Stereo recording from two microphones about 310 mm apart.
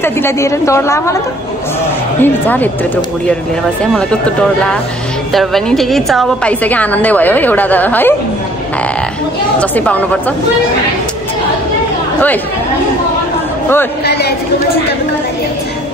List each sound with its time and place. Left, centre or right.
0.0 s a woman's voice: centre
2.2 s a woman's voice: centre
5.3 s a woman's voice: centre
9.6 s a woman's voice: centre
14.0 s chatter: left